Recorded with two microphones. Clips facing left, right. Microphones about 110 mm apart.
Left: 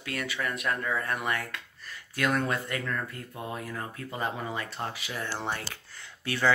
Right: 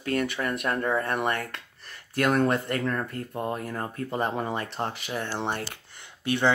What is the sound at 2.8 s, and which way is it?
Speech, 40° right (ahead or behind).